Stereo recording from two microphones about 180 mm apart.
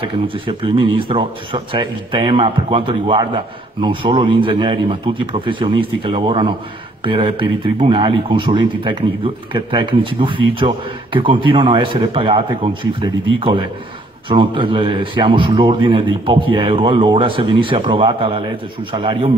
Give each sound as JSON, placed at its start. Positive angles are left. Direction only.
{"t": 0.0, "sound": "a man's voice", "side_deg": -25}